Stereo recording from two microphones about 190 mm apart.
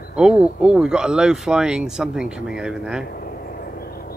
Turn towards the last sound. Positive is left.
turn(degrees=55)  # may be behind; listen again after turning